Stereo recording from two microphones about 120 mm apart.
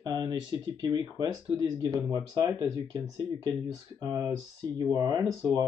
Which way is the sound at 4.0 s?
30° right (ahead or behind).